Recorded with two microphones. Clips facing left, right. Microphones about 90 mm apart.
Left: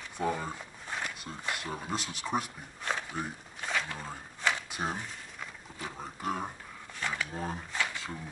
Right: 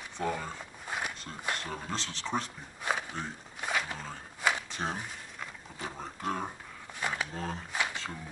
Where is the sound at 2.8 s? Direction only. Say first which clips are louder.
Right 1 dB; 10° right (ahead or behind).